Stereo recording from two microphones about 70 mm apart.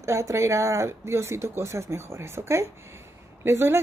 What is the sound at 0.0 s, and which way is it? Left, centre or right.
Speech, right.